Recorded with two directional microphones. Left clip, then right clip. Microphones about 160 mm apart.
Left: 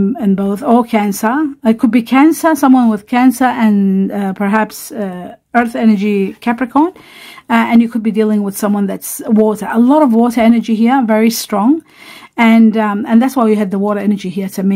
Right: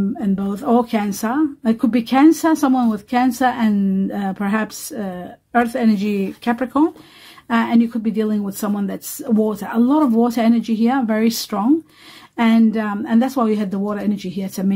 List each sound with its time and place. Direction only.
0.2 s a woman's voice: 40° left (ahead or behind)